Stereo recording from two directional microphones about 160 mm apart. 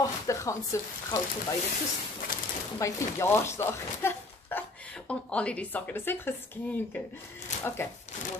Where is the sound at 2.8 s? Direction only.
15° left (ahead or behind).